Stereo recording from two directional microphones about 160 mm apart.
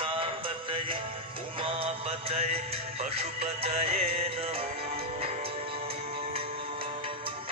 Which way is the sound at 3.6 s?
40° right (ahead or behind).